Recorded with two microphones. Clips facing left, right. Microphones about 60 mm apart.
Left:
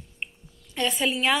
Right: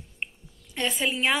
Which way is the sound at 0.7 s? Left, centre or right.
Right.